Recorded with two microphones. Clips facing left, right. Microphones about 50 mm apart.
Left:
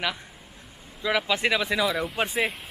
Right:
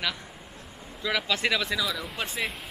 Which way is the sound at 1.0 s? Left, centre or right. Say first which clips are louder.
Left 3 dB; centre.